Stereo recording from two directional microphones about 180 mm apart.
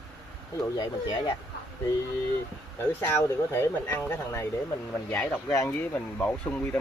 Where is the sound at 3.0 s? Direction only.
10° left (ahead or behind).